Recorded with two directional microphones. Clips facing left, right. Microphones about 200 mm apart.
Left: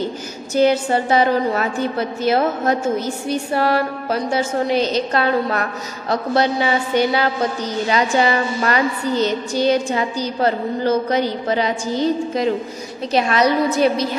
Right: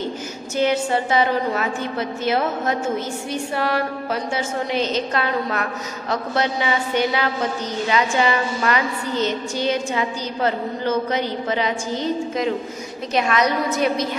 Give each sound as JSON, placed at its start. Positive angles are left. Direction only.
{"t": 0.6, "sound": "a woman's voice", "side_deg": 35}
{"t": 13.1, "sound": "a woman's voice", "side_deg": 35}